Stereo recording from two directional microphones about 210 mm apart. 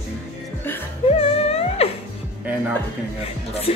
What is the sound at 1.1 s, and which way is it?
Music, 30° left (ahead or behind).